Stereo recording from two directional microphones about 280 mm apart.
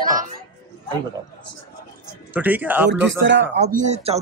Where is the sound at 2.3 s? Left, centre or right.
Centre.